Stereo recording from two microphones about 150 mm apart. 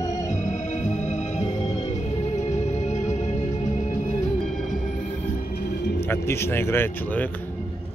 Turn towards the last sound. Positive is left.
turn(degrees=15)  # may be behind; listen again after turning